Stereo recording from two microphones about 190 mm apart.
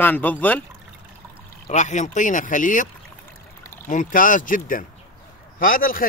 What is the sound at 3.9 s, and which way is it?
A man's voice, 45° left (ahead or behind).